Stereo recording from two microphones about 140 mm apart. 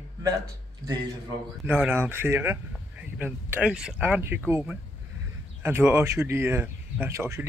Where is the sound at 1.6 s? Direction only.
15° right (ahead or behind).